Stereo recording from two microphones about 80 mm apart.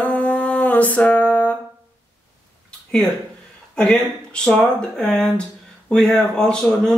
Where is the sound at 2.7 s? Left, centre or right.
Centre.